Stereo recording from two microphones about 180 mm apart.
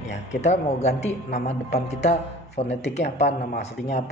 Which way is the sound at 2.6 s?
40° left (ahead or behind).